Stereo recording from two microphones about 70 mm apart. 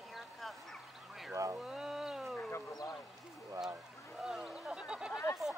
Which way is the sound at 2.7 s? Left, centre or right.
Left.